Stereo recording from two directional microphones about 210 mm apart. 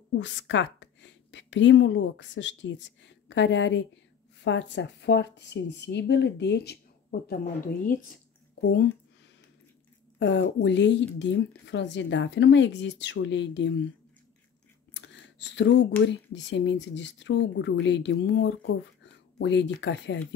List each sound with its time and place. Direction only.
0.2 s a woman's voice: 60° left (ahead or behind); by 8.2 s 40° left (ahead or behind)
8.5 s a woman's voice: 60° left (ahead or behind)
10.1 s a woman's voice: 60° left (ahead or behind)
15.0 s a sound: 60° left (ahead or behind)
16.1 s a woman's voice: 60° left (ahead or behind)